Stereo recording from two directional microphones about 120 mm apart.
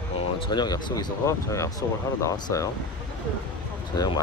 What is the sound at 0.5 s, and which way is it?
Speech, 35° left (ahead or behind).